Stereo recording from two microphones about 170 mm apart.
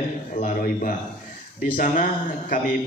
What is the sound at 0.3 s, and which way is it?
Speech, 55° left (ahead or behind).